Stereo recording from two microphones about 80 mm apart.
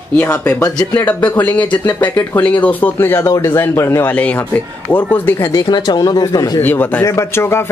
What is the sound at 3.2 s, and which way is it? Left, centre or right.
Speech, left.